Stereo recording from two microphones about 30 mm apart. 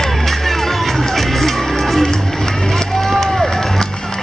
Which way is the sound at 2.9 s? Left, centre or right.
Centre.